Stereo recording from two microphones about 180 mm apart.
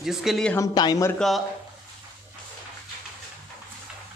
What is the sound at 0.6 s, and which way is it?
Speech, 20° left (ahead or behind).